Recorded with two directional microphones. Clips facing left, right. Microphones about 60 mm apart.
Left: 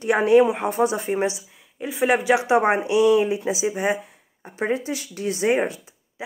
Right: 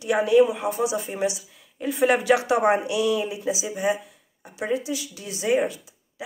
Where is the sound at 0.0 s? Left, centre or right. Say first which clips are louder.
Left 2 dB; left.